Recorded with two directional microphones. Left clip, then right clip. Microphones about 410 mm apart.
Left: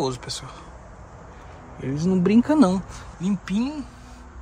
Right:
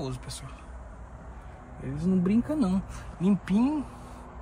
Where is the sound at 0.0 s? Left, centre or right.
Centre.